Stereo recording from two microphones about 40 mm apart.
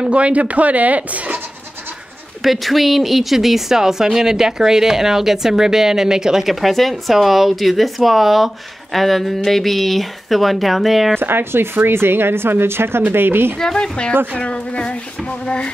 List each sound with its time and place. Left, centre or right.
0.0 s speech: right
2.4 s speech: centre
11.1 s speech: right
13.1 s speech: right
13.6 s speech: centre